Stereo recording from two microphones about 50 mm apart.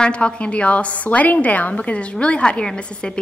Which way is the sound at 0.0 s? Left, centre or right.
Left.